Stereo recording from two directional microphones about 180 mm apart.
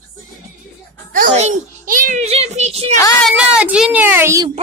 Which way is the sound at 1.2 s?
45° right (ahead or behind).